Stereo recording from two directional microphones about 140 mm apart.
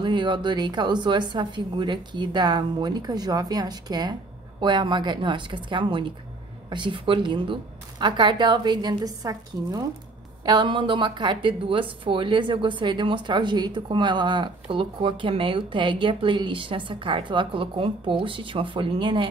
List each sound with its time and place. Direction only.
0.0 s a woman's voice: 35° right (ahead or behind)